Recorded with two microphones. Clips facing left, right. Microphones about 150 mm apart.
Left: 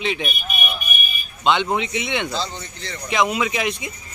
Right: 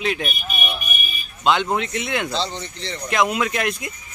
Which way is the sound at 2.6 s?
30° right (ahead or behind).